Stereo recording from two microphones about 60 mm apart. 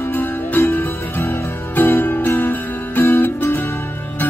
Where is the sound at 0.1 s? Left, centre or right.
Left.